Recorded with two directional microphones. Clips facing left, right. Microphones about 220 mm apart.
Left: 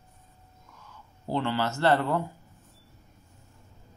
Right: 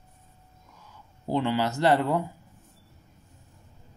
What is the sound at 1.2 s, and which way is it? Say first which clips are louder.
Speech: right 3 dB; 15° right (ahead or behind).